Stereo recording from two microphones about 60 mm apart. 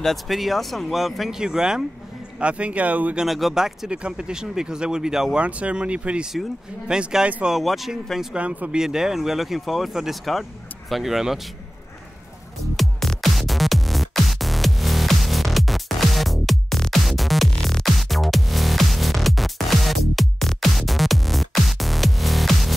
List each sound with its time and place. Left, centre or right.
0.0 s speech: centre; by 3.2 s right
3.3 s speech: centre
5.4 s speech: centre
8.4 s speech: right
8.7 s speech: centre
12.7 s music: centre
17.5 s music: centre